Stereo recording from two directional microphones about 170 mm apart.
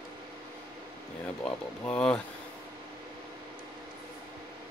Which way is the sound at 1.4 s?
5° left (ahead or behind).